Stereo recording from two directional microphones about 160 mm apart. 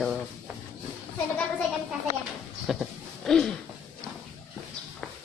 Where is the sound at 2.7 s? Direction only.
Centre (ahead or behind).